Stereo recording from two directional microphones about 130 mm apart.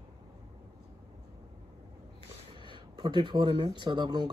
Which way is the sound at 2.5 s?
40° right (ahead or behind).